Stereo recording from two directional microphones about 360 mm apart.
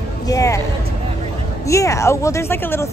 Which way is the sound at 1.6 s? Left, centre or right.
Centre.